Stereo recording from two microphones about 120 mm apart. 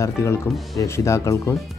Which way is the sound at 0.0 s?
25° left (ahead or behind).